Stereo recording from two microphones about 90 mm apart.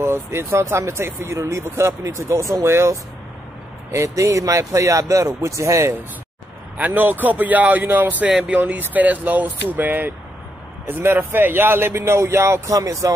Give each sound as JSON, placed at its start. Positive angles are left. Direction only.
{"t": 0.0, "sound": "speech", "side_deg": -30}
{"t": 6.8, "sound": "a man's voice", "side_deg": -20}